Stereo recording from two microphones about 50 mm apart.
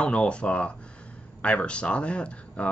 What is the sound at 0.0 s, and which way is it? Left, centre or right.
Speech, left.